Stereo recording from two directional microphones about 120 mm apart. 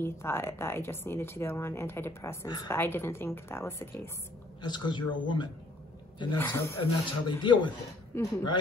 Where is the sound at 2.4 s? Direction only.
35° left (ahead or behind).